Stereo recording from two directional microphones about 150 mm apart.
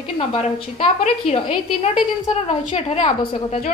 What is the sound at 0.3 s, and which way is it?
A woman's voice, 40° left (ahead or behind).